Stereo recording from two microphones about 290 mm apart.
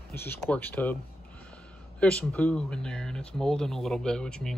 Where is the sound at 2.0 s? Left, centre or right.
Centre.